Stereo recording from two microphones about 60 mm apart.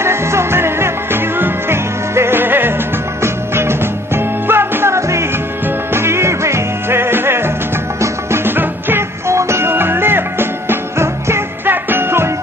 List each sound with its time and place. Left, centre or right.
0.0 s music: right
9.3 s music: right